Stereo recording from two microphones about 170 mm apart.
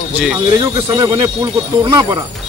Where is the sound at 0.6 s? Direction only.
20° right (ahead or behind).